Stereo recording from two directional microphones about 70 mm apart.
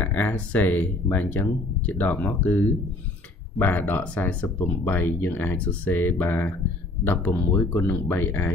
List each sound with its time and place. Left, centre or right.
0.0 s speech: left